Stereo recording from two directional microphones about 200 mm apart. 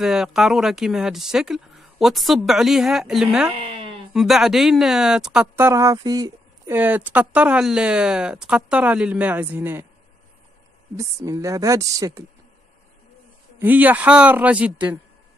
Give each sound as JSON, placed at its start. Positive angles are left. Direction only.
{"t": 0.0, "sound": "speech", "side_deg": 0}
{"t": 3.6, "sound": "a sound", "side_deg": -30}
{"t": 4.1, "sound": "speech", "side_deg": 0}
{"t": 5.7, "sound": "speech", "side_deg": -15}
{"t": 11.0, "sound": "speech", "side_deg": -15}
{"t": 13.6, "sound": "speech", "side_deg": -10}